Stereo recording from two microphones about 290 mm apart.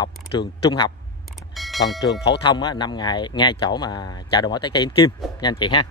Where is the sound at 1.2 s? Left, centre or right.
Centre.